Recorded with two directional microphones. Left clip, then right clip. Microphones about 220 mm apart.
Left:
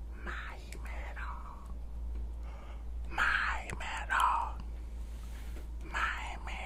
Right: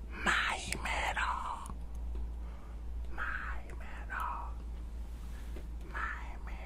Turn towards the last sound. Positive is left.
turn(degrees=20)  # may be behind; listen again after turning